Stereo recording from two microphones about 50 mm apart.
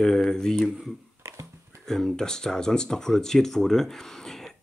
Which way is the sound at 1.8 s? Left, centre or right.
Centre.